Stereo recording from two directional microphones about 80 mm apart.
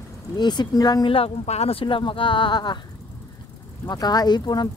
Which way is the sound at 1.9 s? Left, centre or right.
Left.